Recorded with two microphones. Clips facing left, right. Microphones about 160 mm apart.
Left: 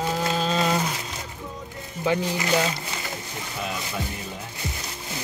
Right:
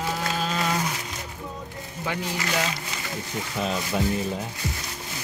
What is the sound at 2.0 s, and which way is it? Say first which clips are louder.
Speech: left 6 dB; 25° left (ahead or behind).